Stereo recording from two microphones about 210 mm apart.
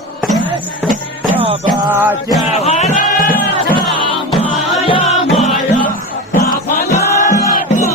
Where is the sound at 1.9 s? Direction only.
10° right (ahead or behind).